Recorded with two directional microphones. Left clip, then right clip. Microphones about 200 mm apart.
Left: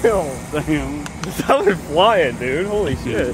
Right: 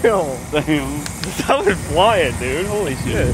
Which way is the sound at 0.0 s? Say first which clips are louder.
Right 1 dB; 50° right (ahead or behind).